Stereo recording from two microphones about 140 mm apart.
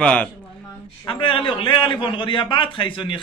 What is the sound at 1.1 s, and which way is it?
A man's voice, 40° left (ahead or behind).